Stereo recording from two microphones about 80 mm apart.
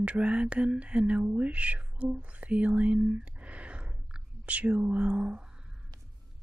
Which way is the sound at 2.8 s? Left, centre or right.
Centre.